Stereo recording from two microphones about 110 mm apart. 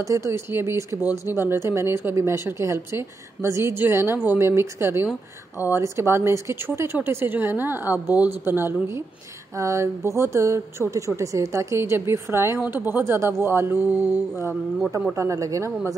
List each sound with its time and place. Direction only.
0.0 s speech: 30° right (ahead or behind)
15.1 s speech: 30° right (ahead or behind)